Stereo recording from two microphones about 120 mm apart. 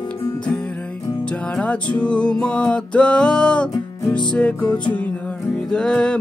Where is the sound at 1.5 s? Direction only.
10° left (ahead or behind).